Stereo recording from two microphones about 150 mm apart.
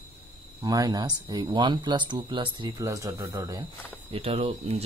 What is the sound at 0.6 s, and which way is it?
Speech, 25° right (ahead or behind).